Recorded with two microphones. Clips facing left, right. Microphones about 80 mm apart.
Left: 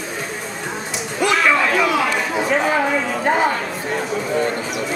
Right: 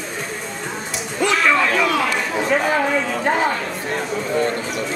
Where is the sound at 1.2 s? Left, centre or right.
Centre.